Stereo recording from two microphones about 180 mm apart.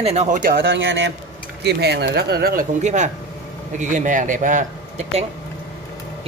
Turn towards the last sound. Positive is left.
turn(degrees=-40)  # may be behind; listen again after turning